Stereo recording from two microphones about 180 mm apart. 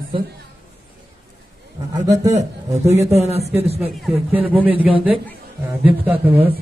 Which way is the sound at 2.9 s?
35° right (ahead or behind).